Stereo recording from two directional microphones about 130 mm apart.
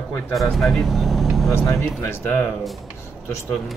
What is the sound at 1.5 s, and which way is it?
Speech, 20° left (ahead or behind).